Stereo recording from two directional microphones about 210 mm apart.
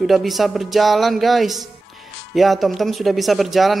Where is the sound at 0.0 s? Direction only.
Centre (ahead or behind).